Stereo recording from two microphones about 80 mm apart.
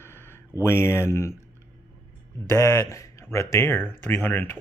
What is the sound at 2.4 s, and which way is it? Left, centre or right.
Speech, left.